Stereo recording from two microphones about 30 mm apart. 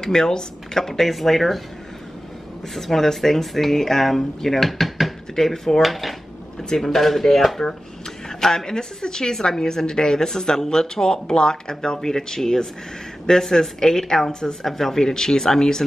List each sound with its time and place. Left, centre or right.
0.0 s speech: centre
2.7 s speech: centre
5.3 s speech: centre
5.8 s a woman's voice: centre